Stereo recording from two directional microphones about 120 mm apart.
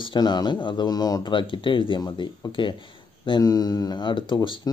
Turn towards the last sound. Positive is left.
turn(degrees=40)  # may be behind; listen again after turning